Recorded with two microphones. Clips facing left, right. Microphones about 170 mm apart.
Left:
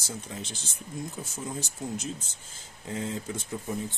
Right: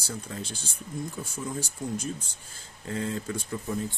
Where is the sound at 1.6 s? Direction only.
25° left (ahead or behind).